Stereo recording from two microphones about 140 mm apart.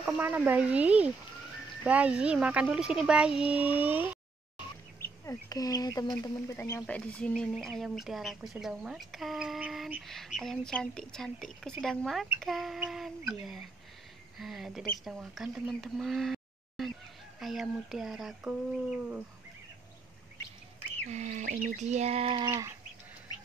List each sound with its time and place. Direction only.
0.0 s speech: 15° right (ahead or behind)
5.0 s speech: 25° left (ahead or behind)
6.9 s speech: 10° left (ahead or behind); by 19.2 s 10° right (ahead or behind)
21.1 s bird: 60° right (ahead or behind)
22.5 s bird: 20° right (ahead or behind)